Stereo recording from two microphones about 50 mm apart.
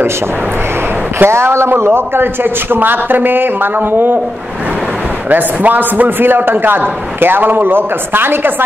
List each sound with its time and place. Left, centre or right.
1.2 s speech: right
2.0 s a man's voice: right
5.3 s a man's voice: right